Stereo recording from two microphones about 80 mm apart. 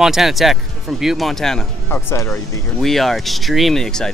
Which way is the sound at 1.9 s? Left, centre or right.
Left.